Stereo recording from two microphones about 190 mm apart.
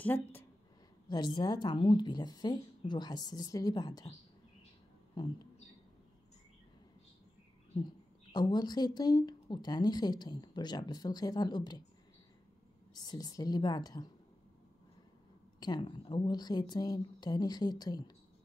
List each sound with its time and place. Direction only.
0.0 s a woman's voice: 10° left (ahead or behind)
1.0 s speech: 20° left (ahead or behind)
5.1 s speech: 25° left (ahead or behind)
7.7 s speech: 25° left (ahead or behind)
12.9 s speech: 20° left (ahead or behind)
15.6 s speech: 25° left (ahead or behind)